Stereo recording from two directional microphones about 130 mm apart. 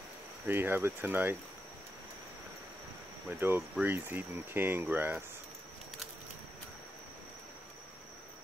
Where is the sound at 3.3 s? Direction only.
15° right (ahead or behind).